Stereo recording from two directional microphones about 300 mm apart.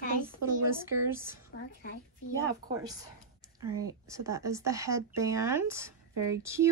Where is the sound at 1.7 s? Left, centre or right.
Left.